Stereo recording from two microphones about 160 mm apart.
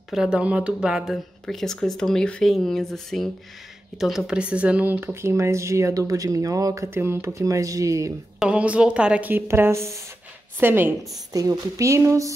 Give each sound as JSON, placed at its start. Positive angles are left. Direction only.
{"t": 0.1, "sound": "speech", "side_deg": -5}
{"t": 8.4, "sound": "a woman's voice", "side_deg": -5}